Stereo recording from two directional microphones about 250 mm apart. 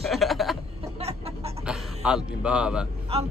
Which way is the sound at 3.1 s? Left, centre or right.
Right.